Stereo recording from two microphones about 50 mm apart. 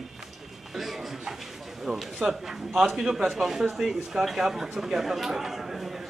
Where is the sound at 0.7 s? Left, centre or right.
Centre.